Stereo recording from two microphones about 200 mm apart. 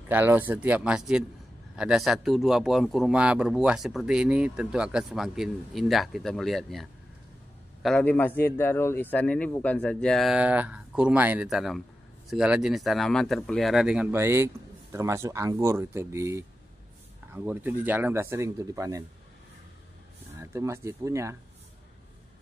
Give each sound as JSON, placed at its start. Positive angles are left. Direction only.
{"t": 0.1, "sound": "a man's voice", "side_deg": -10}
{"t": 20.3, "sound": "speech", "side_deg": -15}